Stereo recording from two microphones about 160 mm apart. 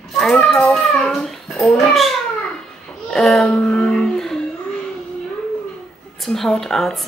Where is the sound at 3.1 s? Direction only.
Centre (ahead or behind).